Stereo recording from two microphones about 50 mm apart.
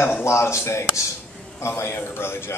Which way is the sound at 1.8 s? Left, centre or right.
Left.